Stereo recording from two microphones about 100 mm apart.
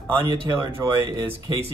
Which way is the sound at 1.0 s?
45° right (ahead or behind).